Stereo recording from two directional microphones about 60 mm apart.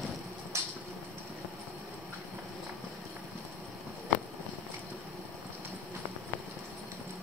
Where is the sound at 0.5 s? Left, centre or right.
Right.